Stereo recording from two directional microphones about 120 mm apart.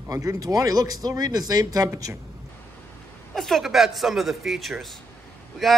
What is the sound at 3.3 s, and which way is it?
Speech, centre (ahead or behind).